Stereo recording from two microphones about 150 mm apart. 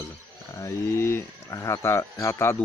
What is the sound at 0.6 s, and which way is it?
Speech, 20° left (ahead or behind).